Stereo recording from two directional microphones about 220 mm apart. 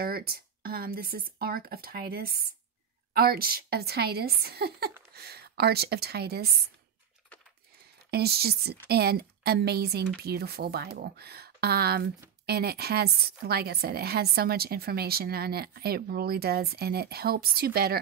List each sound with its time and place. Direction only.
0.0 s speech: 45° right (ahead or behind)
8.1 s speech: 45° right (ahead or behind)